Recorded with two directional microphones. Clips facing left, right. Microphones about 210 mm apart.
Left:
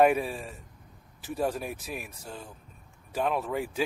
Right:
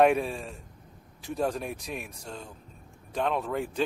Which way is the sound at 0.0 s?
5° left (ahead or behind).